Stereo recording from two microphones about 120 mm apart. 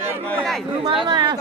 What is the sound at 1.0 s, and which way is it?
Speech, 35° right (ahead or behind).